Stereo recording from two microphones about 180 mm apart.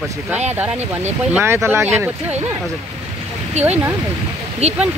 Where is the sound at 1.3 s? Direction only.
15° right (ahead or behind).